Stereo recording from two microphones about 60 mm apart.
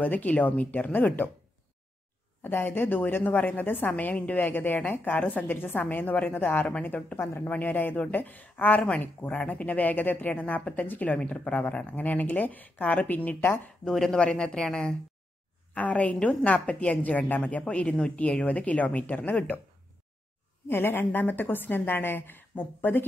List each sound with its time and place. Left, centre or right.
0.0 s speech: left
2.4 s a woman's voice: left
13.8 s speech: centre
15.7 s speech: left
20.6 s a woman's voice: left